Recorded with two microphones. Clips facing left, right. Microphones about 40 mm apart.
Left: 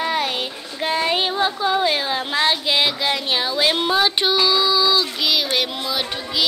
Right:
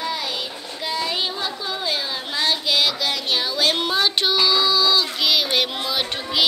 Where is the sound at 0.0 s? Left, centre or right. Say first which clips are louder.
Left 5 dB; left.